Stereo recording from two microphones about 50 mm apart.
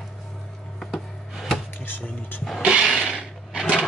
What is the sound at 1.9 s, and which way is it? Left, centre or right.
Music, left.